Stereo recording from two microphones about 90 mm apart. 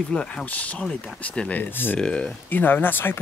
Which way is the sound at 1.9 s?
10° left (ahead or behind).